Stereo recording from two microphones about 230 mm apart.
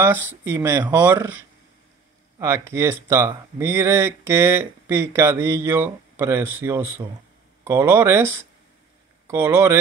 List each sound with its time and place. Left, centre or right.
0.0 s speech: centre